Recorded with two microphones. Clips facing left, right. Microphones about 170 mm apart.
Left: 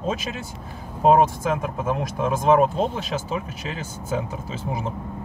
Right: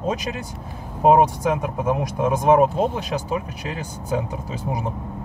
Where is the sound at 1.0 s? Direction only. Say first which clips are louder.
Right 1 dB; 15° right (ahead or behind).